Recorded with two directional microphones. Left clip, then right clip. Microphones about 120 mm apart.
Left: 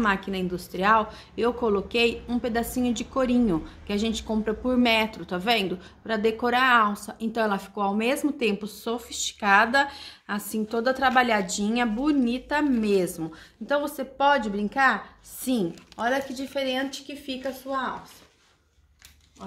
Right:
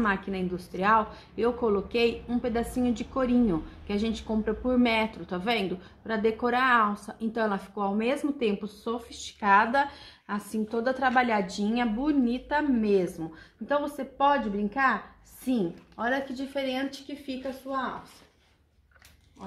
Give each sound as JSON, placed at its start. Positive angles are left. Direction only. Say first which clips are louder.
{"t": 0.0, "sound": "a woman's voice", "louder": "left 3 dB", "side_deg": 25}